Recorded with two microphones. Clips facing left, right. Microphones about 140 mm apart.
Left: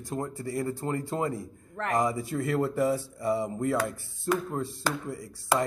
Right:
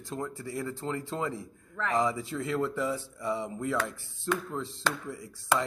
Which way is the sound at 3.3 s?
55° left (ahead or behind).